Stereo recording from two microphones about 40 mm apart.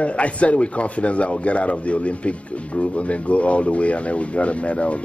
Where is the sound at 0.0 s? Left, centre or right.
Left.